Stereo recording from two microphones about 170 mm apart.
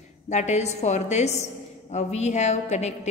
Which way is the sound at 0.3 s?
40° left (ahead or behind).